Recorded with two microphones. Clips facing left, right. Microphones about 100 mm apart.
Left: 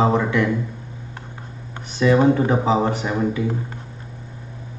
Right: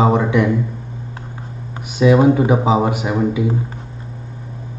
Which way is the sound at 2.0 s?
15° right (ahead or behind).